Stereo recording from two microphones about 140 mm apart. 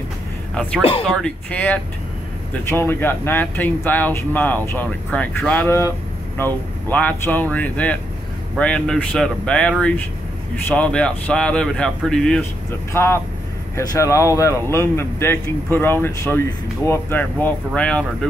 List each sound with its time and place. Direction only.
1.1 s speech: 5° left (ahead or behind)
12.9 s speech: 15° left (ahead or behind)